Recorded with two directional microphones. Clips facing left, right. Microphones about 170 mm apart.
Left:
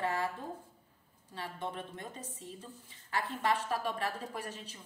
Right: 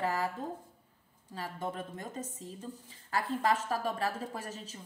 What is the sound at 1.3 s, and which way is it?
A woman's voice, 40° right (ahead or behind).